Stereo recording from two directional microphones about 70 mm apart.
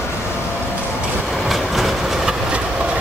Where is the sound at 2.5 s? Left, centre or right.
Centre.